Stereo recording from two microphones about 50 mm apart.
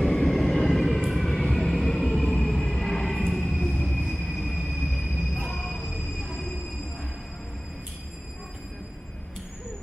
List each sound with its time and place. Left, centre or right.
0.0 s train: centre
1.3 s vehicle: centre
1.7 s music: centre
2.8 s train: centre
5.3 s train: centre